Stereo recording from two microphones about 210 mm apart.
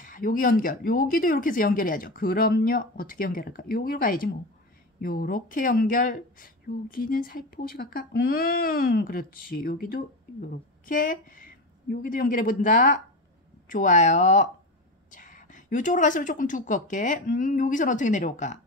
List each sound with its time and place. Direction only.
0.0 s a woman's voice: 40° left (ahead or behind)